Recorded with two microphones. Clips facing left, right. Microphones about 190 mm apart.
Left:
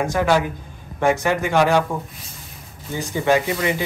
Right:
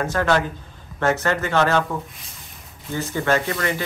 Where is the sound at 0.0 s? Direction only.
15° left (ahead or behind).